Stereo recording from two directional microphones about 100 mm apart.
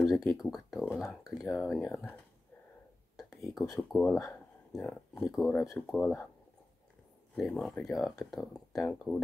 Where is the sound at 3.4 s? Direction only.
Centre (ahead or behind).